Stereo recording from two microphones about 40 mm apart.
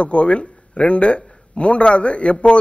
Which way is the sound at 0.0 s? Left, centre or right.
Left.